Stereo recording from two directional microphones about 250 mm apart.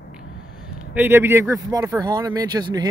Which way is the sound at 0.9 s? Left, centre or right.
Centre.